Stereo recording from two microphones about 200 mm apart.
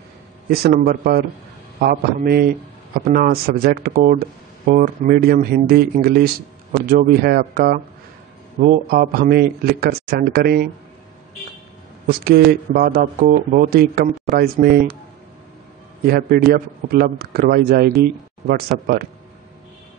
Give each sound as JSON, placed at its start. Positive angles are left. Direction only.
{"t": 0.5, "sound": "speech", "side_deg": -50}
{"t": 12.1, "sound": "speech", "side_deg": -50}
{"t": 16.1, "sound": "speech", "side_deg": -50}